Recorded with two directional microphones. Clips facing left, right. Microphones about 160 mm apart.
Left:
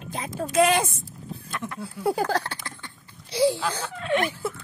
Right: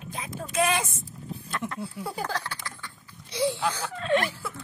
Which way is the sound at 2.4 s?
25° left (ahead or behind).